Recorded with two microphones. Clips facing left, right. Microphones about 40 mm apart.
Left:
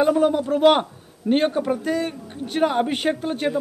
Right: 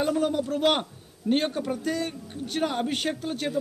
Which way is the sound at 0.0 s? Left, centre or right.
Centre.